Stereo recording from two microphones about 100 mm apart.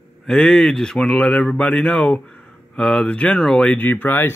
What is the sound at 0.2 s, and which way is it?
Speech, 5° left (ahead or behind).